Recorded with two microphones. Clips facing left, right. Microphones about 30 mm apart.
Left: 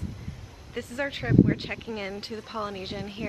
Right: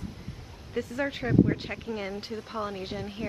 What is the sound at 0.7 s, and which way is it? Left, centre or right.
A woman's voice, centre.